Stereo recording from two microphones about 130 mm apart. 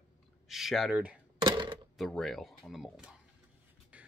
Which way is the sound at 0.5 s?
Centre (ahead or behind).